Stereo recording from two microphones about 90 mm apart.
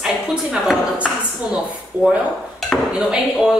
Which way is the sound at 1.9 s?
20° right (ahead or behind).